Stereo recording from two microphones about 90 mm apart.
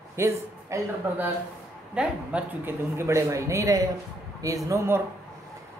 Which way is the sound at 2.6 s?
30° right (ahead or behind).